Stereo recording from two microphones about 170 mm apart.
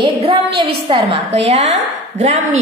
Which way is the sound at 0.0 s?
30° right (ahead or behind).